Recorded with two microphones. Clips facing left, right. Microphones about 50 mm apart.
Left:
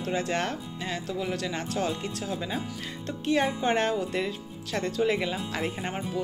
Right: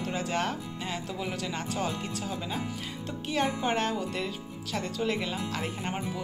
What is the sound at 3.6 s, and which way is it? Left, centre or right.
Speech, centre.